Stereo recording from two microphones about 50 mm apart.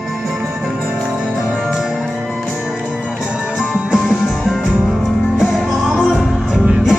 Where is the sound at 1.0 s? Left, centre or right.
Centre.